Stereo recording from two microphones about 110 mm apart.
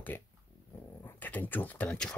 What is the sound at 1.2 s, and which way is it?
Speech, 15° left (ahead or behind).